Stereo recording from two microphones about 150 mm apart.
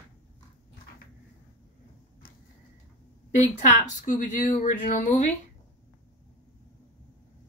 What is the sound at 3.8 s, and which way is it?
Speech, 60° left (ahead or behind).